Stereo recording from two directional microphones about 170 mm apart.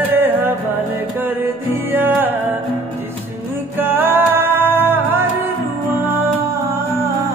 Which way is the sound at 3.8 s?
10° right (ahead or behind).